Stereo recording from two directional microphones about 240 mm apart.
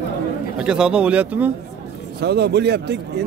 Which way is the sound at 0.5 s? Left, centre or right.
Centre.